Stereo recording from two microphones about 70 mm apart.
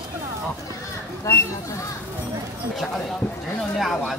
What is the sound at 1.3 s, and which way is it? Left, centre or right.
Speech, left.